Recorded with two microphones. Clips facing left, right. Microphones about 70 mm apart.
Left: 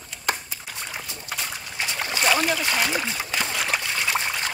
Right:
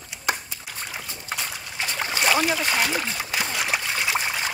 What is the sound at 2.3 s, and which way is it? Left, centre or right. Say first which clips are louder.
Splash: right 1 dB; centre.